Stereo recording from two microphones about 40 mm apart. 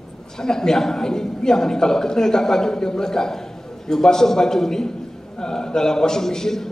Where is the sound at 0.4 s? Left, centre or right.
Centre.